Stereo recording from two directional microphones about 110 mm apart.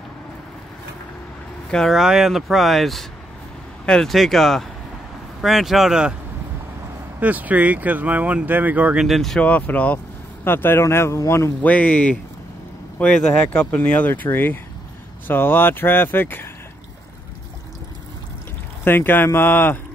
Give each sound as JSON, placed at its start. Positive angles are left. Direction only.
{"t": 1.7, "sound": "speech", "side_deg": 5}
{"t": 7.2, "sound": "speech", "side_deg": -15}
{"t": 9.0, "sound": "speech", "side_deg": 0}
{"t": 11.6, "sound": "speech", "side_deg": 15}
{"t": 18.9, "sound": "speech", "side_deg": 20}